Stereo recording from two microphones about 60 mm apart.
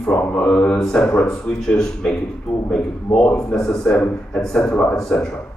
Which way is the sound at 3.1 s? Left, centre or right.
Centre.